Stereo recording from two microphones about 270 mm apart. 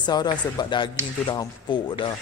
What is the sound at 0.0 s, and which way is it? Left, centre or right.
Speech, centre.